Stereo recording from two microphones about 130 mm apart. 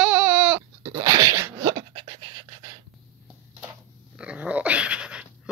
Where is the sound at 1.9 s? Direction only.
40° right (ahead or behind).